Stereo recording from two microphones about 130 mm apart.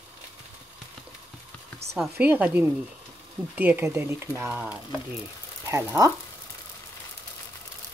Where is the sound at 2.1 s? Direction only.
15° right (ahead or behind).